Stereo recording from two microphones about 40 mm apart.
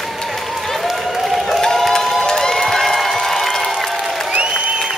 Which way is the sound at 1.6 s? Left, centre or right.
Centre.